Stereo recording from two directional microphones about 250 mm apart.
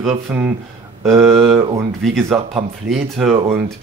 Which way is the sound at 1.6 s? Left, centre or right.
Centre.